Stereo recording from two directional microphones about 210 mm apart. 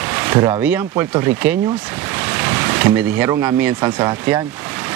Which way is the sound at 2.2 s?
10° right (ahead or behind).